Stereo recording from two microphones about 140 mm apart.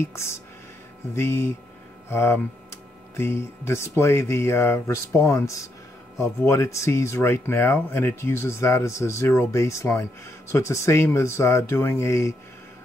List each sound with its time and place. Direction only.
0.0 s speech: 20° left (ahead or behind)